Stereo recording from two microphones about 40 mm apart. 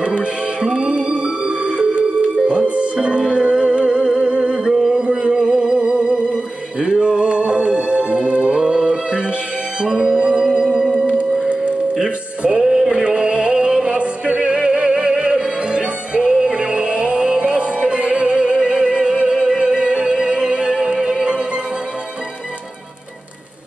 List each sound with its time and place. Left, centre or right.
0.0 s music: right
12.5 s music: centre